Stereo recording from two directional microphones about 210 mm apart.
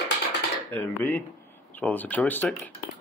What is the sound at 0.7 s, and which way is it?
Speech, 10° left (ahead or behind).